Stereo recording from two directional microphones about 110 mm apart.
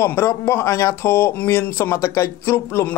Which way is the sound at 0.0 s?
25° left (ahead or behind).